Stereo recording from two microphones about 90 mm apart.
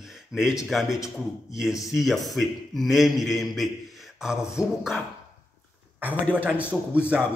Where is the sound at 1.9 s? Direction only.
Centre (ahead or behind).